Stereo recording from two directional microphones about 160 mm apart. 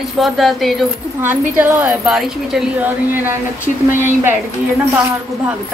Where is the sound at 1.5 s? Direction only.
10° right (ahead or behind).